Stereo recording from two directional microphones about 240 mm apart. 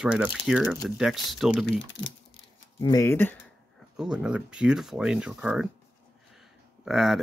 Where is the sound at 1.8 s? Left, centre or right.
Left.